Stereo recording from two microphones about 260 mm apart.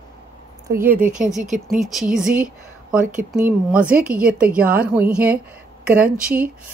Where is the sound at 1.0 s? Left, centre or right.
Right.